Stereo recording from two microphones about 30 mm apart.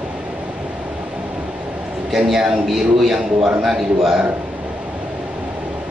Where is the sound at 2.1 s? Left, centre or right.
Centre.